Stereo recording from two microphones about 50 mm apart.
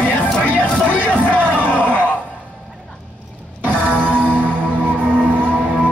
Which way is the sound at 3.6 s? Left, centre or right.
Right.